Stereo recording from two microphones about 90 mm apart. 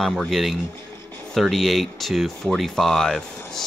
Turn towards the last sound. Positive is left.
turn(degrees=5)  # may be behind; listen again after turning